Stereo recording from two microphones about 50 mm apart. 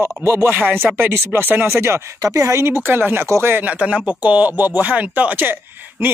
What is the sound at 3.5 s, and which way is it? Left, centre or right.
Speech, right.